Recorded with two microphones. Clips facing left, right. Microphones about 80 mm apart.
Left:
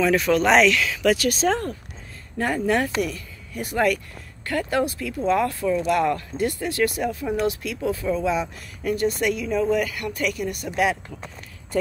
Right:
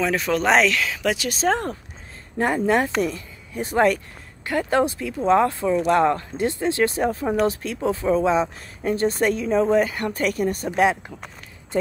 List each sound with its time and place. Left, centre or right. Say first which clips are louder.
0.0 s speech: left 2 dB; right